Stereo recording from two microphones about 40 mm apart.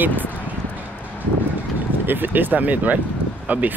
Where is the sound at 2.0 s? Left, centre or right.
Right.